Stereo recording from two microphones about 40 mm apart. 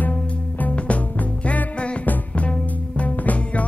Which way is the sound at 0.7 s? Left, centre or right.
Left.